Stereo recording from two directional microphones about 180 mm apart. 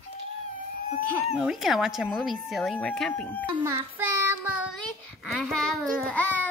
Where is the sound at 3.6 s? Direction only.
15° right (ahead or behind).